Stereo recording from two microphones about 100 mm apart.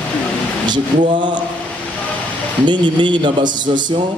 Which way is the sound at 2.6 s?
50° right (ahead or behind).